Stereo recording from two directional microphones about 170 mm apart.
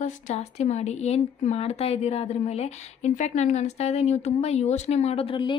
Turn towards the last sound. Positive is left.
turn(degrees=30)  # may be behind; listen again after turning